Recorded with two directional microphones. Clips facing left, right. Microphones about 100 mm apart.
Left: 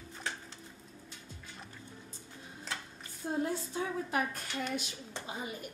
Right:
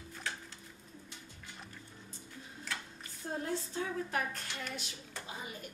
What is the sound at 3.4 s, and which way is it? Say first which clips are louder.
Speech: left 2 dB; 10° left (ahead or behind).